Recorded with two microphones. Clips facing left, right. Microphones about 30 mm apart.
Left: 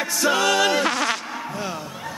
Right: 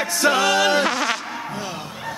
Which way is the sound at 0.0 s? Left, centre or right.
Centre.